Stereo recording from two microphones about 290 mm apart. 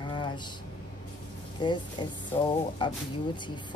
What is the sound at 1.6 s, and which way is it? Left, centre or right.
A woman's voice, centre.